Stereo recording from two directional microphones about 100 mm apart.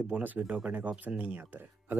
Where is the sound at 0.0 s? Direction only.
15° right (ahead or behind).